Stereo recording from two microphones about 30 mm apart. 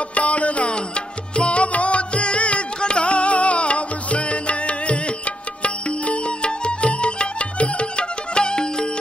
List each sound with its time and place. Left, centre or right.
0.1 s music: left
0.7 s music: left